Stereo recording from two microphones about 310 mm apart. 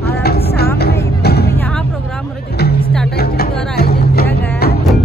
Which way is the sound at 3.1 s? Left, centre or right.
Left.